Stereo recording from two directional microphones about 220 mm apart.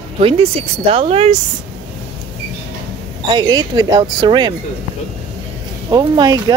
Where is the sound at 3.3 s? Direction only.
20° right (ahead or behind).